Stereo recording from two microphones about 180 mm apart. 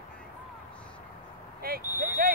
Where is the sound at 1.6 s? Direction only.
55° right (ahead or behind).